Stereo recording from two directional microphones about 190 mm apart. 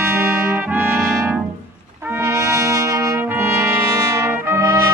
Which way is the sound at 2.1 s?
15° right (ahead or behind).